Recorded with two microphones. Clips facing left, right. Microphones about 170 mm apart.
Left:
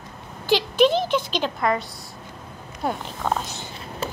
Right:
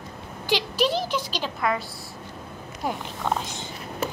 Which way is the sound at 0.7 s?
55° left (ahead or behind).